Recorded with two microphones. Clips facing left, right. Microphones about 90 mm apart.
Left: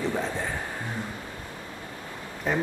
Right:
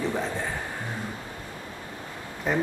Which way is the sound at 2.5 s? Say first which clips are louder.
Right 1 dB; centre (ahead or behind).